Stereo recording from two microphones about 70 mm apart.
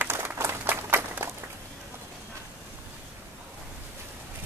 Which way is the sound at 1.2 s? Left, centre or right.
Right.